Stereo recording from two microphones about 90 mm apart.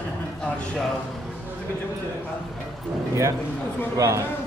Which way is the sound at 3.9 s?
35° right (ahead or behind).